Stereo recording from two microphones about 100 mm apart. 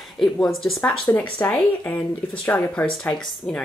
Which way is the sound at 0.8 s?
20° left (ahead or behind).